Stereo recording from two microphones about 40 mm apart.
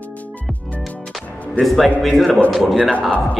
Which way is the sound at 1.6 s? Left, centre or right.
Centre.